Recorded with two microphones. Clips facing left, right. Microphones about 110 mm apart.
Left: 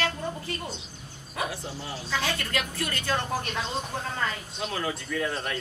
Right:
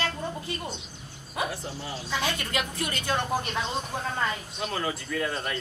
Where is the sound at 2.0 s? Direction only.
20° right (ahead or behind).